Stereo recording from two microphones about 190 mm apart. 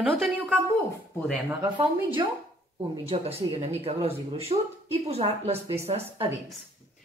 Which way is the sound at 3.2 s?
30° right (ahead or behind).